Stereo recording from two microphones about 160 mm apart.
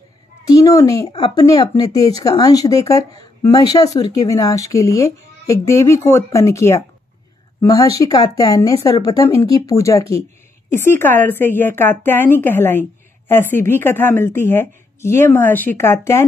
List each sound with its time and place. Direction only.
0.5 s a sound: 20° left (ahead or behind)
1.3 s speech: 25° left (ahead or behind)
8.0 s a woman's voice: 25° left (ahead or behind)